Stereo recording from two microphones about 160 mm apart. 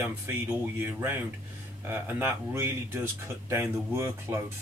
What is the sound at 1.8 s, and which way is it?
Speech, 15° right (ahead or behind).